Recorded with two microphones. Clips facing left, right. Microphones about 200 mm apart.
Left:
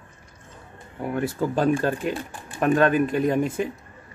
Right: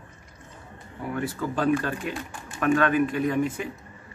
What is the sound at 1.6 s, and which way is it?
Speech, 30° left (ahead or behind).